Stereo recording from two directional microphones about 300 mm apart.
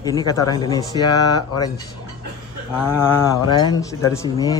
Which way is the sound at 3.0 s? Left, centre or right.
Centre.